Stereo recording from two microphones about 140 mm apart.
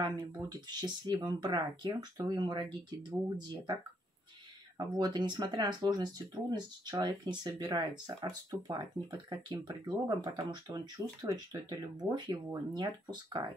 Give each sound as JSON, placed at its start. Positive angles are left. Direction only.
{"t": 0.0, "sound": "speech", "side_deg": -30}
{"t": 4.7, "sound": "speech", "side_deg": -30}